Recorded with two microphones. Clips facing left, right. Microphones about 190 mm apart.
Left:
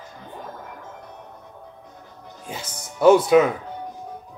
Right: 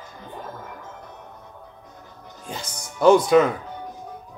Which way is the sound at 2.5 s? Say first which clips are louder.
Even; 5° left (ahead or behind).